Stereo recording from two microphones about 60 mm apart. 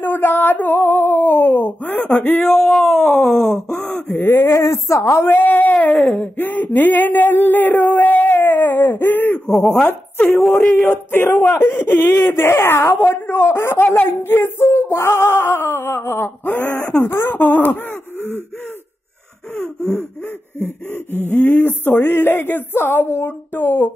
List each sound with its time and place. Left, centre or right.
0.0 s female singing: left
2.4 s speech: centre
3.4 s speech: right
3.9 s a sound: left
5.2 s male singing: left
6.1 s a sound: left
9.5 s speech: centre
9.8 s speech: left
10.9 s male singing: left
19.5 s speech: centre
20.5 s male singing: left